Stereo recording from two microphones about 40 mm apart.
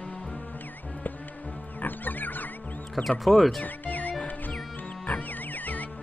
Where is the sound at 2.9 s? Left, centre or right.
Centre.